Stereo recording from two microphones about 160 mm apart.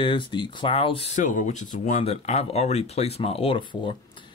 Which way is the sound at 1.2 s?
50° left (ahead or behind).